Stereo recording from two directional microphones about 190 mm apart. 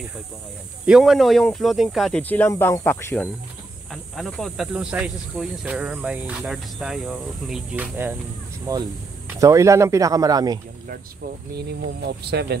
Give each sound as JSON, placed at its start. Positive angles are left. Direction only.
{"t": 0.8, "sound": "speech", "side_deg": 0}
{"t": 8.7, "sound": "speech", "side_deg": -20}
{"t": 11.5, "sound": "speech", "side_deg": -60}